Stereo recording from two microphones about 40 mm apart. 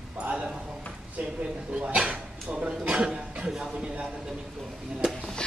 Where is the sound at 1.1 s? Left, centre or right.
Right; by 3.5 s centre.